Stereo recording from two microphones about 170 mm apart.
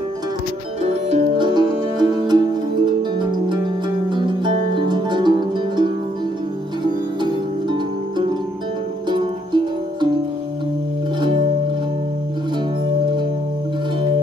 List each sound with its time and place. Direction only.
0.8 s music: 40° right (ahead or behind)
1.5 s music: 25° right (ahead or behind)
9.1 s music: 25° right (ahead or behind)
11.1 s music: 30° right (ahead or behind)